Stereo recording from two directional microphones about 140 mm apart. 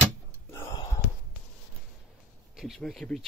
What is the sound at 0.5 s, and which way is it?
Whispering, 25° left (ahead or behind).